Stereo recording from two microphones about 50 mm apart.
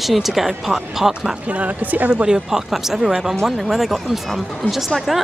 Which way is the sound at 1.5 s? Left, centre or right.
Right.